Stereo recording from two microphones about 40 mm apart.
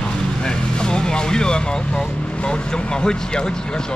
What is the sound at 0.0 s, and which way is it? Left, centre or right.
Vehicle, centre.